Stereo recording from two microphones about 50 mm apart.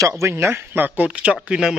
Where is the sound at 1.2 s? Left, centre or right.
Centre.